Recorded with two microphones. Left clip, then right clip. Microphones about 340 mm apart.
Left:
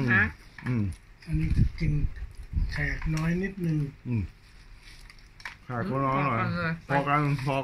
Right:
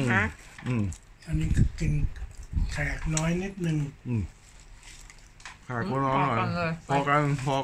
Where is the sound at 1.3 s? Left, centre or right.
Right.